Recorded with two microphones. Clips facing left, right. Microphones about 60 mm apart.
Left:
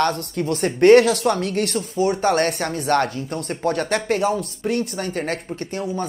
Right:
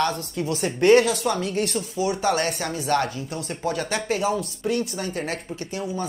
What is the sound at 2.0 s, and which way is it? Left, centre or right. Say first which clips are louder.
A woman's voice: left 4 dB; left.